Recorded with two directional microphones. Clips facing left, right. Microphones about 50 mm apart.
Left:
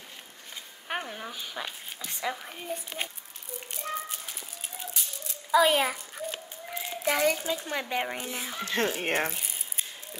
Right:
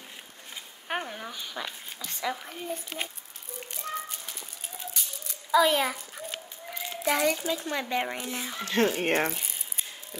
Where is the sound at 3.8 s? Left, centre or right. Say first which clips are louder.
Even; centre.